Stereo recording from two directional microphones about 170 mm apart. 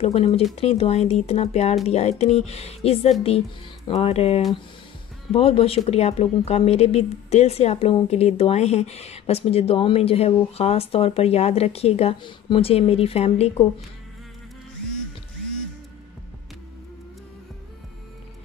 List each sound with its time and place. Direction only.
0.0 s speech: 40° left (ahead or behind)